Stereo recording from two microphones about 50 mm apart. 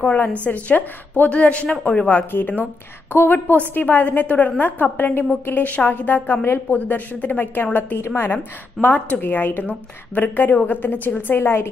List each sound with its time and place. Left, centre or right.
0.2 s a woman's voice: left
1.3 s speech: left
2.0 s a woman's voice: left
3.1 s a woman's voice: left
6.7 s a woman's voice: left
8.0 s a woman's voice: left
8.8 s a woman's voice: left